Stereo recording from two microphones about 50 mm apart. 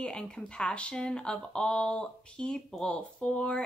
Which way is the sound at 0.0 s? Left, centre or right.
Centre.